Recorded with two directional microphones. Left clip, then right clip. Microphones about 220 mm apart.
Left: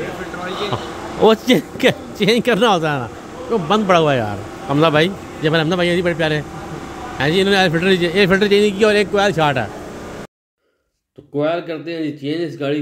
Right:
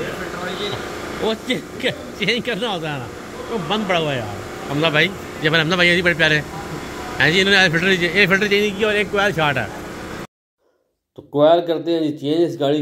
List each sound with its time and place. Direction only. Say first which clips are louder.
1.2 s a man's voice: left 10 dB; 45° left (ahead or behind); by 9.7 s 25° left (ahead or behind)
11.4 s speech: right 7 dB; 5° right (ahead or behind)